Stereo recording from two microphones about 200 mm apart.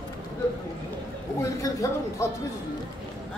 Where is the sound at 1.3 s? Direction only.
15° left (ahead or behind).